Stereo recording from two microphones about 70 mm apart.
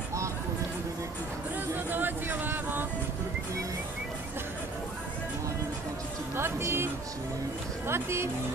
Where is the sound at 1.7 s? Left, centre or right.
Right.